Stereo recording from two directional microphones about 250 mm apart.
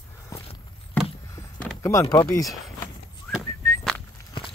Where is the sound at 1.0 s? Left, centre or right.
Centre.